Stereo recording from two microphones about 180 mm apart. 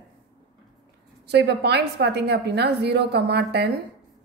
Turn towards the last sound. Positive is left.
turn(degrees=-65)  # may be behind; listen again after turning